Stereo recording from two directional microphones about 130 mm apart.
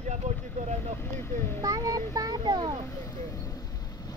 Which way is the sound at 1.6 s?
30° right (ahead or behind).